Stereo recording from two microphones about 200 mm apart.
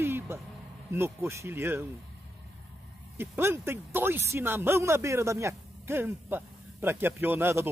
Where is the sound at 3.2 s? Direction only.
10° right (ahead or behind).